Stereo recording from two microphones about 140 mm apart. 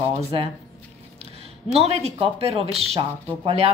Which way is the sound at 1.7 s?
50° right (ahead or behind).